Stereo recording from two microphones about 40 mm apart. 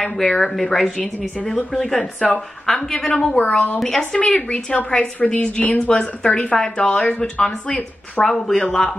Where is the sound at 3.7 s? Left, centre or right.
Centre.